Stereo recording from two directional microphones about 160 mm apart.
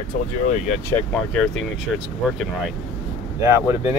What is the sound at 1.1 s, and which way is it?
Speech, 5° left (ahead or behind).